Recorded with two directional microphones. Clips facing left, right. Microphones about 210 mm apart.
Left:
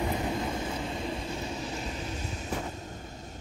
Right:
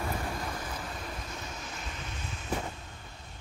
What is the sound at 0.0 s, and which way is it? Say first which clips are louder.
Vehicle: left 5 dB; 20° left (ahead or behind).